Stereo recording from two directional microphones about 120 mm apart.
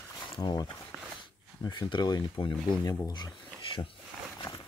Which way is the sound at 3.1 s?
40° left (ahead or behind).